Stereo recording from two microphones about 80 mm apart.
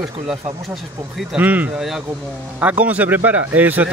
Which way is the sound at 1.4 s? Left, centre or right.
Right.